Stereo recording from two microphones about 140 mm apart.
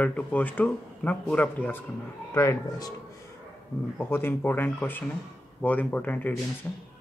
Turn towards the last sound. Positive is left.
turn(degrees=10)  # may be behind; listen again after turning